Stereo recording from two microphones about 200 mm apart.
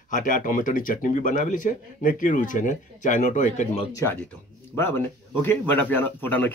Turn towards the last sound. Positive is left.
turn(degrees=10)  # may be behind; listen again after turning